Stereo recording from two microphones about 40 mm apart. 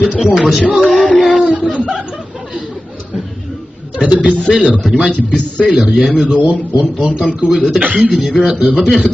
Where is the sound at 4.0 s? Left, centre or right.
Right.